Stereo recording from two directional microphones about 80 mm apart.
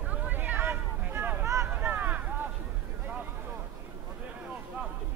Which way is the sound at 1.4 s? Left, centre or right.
Right.